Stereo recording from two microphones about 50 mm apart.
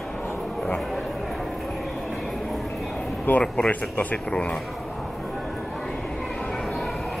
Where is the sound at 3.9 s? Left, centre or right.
Left.